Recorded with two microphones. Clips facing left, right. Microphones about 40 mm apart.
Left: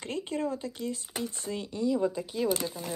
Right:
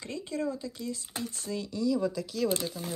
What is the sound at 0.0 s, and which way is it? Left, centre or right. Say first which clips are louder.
Speech: left 1 dB; left.